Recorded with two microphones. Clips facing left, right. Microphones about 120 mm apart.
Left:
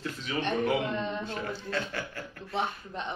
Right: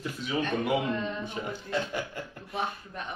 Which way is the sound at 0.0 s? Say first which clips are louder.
Right 2 dB; 10° right (ahead or behind).